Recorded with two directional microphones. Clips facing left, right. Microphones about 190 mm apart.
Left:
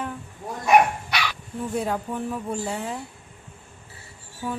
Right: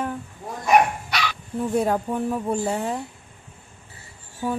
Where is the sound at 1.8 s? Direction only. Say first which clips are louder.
Right 4 dB; 45° right (ahead or behind).